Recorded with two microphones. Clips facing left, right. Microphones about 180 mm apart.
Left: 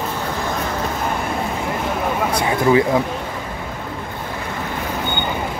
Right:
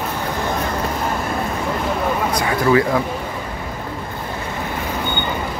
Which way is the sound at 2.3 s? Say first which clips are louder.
Left 1 dB; 20° left (ahead or behind).